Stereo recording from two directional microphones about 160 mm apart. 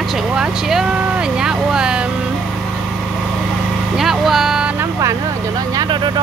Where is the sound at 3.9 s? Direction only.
5° right (ahead or behind); by 6.2 s 30° right (ahead or behind).